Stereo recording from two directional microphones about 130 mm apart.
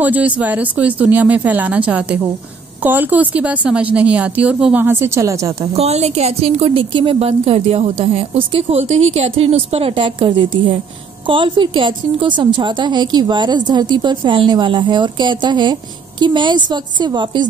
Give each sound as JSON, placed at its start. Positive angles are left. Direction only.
{"t": 0.0, "sound": "speech", "side_deg": -10}
{"t": 4.8, "sound": "a woman's voice", "side_deg": -20}
{"t": 5.8, "sound": "a woman's voice", "side_deg": -55}